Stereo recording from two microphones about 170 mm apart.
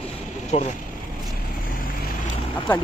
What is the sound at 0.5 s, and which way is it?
Speech, 35° left (ahead or behind).